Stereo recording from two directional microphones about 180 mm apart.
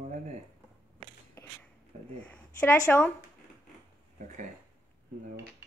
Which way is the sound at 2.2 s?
10° left (ahead or behind).